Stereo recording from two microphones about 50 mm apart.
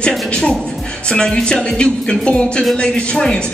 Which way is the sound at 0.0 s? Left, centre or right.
Centre.